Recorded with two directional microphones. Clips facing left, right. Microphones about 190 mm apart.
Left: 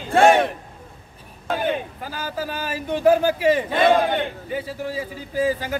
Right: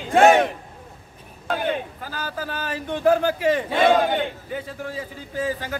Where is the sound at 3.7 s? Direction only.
10° right (ahead or behind).